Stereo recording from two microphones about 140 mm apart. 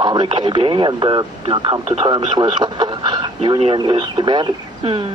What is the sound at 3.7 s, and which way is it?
Speech, 30° right (ahead or behind).